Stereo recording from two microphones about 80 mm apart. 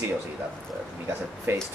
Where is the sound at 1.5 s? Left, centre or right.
Right.